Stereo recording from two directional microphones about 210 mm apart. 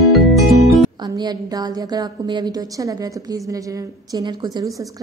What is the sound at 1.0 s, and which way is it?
A woman's voice, 20° right (ahead or behind).